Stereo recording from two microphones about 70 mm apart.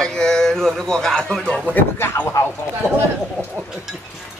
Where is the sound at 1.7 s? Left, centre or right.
Left.